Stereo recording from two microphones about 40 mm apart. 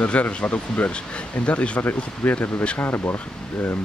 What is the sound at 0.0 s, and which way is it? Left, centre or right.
Speech, left.